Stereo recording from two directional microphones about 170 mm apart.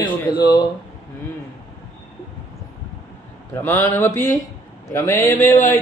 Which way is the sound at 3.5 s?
15° left (ahead or behind).